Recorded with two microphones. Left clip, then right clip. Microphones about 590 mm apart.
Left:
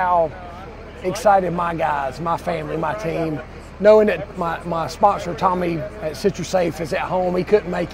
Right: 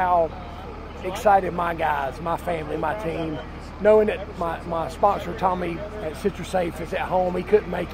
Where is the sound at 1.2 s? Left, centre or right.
Left.